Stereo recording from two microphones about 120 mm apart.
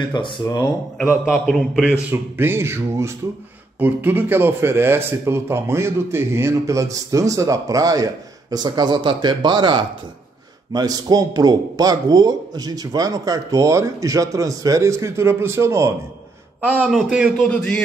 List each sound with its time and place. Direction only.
0.0 s speech: 40° left (ahead or behind)
1.2 s a man's voice: centre (ahead or behind)
2.3 s a man's voice: 20° right (ahead or behind)
16.7 s a man's voice: 10° right (ahead or behind)